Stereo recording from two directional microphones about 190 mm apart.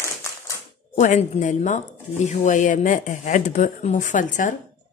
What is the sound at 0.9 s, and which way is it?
Speech, 40° left (ahead or behind).